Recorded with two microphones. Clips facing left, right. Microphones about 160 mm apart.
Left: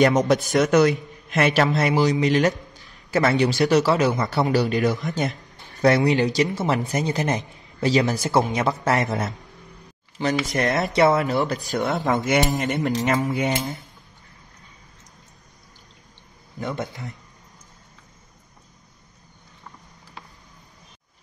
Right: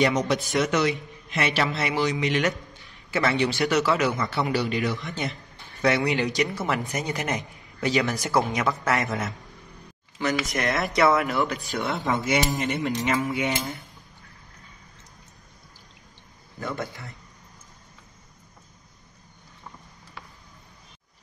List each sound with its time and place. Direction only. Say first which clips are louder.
0.0 s a man's voice: left 5 dB; 45° left (ahead or behind)
16.5 s a man's voice: left 3 dB; 20° left (ahead or behind)